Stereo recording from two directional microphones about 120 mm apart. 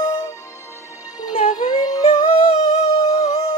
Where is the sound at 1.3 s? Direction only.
80° left.